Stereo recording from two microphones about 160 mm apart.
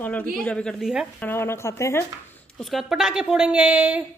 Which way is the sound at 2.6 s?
Centre (ahead or behind).